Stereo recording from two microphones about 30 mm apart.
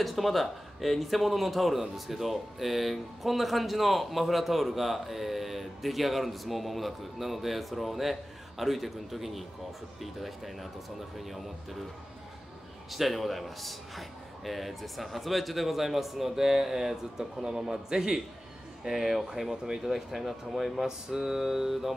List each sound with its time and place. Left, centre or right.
0.0 s a man's voice: centre
12.9 s a man's voice: centre
18.9 s a man's voice: centre
19.9 s a man's voice: centre
20.8 s mantra: centre